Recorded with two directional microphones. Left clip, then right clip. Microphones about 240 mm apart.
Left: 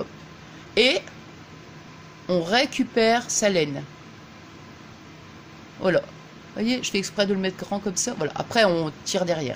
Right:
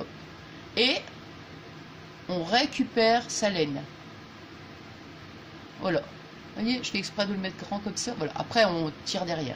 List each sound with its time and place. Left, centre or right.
0.7 s speech: left
2.2 s speech: left
5.8 s speech: left